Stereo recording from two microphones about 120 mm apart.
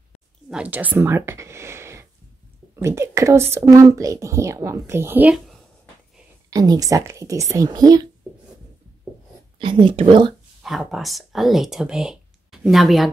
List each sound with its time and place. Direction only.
0.5 s a woman's voice: 10° right (ahead or behind)
6.5 s a woman's voice: 30° right (ahead or behind)
9.6 s speech: 40° right (ahead or behind)
10.6 s speech: centre (ahead or behind)